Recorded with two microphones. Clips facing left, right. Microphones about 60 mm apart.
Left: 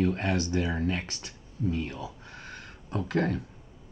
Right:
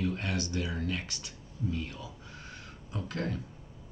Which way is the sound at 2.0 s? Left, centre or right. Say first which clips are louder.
Left 5 dB; left.